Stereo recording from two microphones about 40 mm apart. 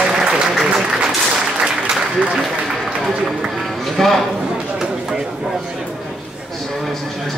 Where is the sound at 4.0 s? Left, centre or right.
Centre.